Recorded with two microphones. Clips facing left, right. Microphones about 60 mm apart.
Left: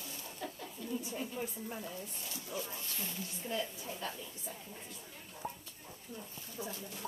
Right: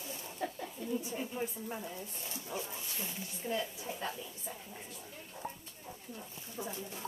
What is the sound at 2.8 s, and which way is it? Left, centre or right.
Speech, centre.